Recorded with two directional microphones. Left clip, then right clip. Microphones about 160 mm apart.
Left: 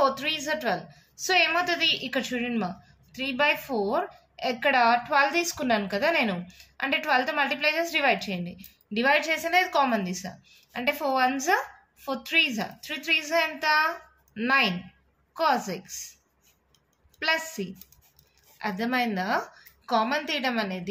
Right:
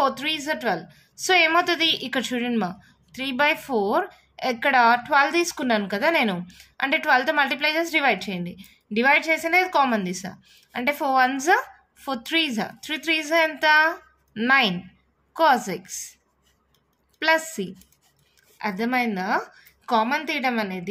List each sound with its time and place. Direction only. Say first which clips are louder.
0.0 s a woman's voice: right 2 dB; 40° right (ahead or behind)
17.2 s a woman's voice: right 5 dB; 50° right (ahead or behind)
18.6 s a woman's voice: right 3 dB; 35° right (ahead or behind)